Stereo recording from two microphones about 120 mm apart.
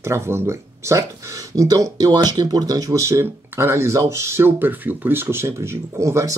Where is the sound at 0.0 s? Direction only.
20° right (ahead or behind).